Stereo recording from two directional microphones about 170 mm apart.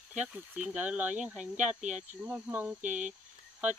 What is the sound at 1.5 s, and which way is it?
Speech, 45° right (ahead or behind).